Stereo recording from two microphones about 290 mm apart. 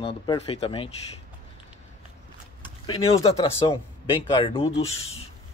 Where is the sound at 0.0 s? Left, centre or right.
Centre.